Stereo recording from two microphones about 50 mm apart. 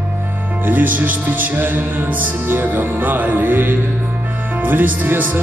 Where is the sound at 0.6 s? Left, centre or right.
Right.